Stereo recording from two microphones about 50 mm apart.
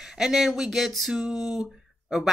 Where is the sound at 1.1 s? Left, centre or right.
Centre.